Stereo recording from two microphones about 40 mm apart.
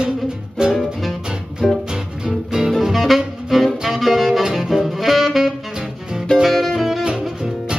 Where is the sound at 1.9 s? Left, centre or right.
Centre.